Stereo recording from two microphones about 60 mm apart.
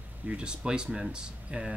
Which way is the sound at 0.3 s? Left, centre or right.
Centre.